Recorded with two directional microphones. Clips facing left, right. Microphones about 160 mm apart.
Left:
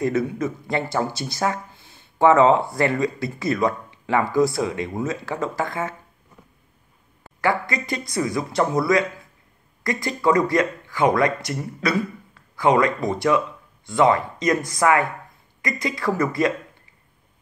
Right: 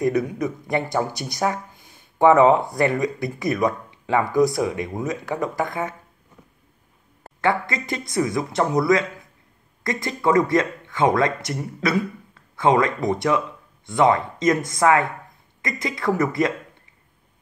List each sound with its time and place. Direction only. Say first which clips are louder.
0.0 s speech: right 1 dB; 15° right (ahead or behind)
7.4 s speech: even; 25° right (ahead or behind)